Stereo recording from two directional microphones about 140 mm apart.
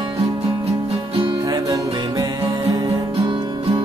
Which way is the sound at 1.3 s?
25° right (ahead or behind).